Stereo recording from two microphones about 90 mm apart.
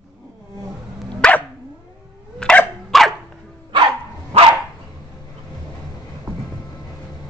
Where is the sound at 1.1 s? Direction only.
10° left (ahead or behind).